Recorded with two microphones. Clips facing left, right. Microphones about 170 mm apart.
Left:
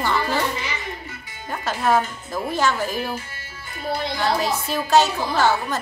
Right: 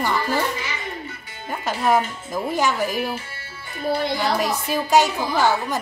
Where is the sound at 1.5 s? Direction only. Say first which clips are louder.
Even; 15° right (ahead or behind).